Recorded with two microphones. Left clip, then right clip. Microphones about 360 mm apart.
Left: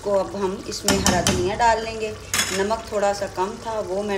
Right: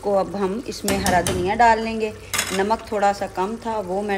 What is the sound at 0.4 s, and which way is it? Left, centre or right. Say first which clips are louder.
A woman's voice: right 1 dB; right.